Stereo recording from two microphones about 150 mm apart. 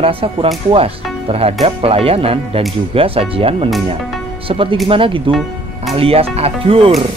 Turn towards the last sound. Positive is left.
turn(degrees=-40)  # may be behind; listen again after turning